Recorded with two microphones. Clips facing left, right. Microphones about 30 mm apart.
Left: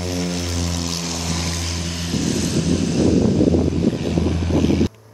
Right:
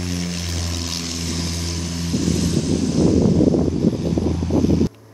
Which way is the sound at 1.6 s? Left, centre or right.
Left.